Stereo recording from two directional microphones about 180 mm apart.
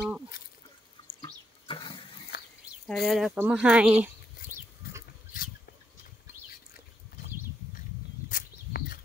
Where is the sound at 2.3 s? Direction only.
65° left (ahead or behind).